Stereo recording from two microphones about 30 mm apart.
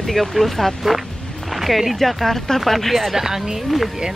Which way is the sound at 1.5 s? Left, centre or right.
Centre.